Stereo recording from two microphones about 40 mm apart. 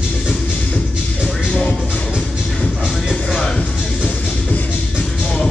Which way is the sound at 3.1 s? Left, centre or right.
Centre.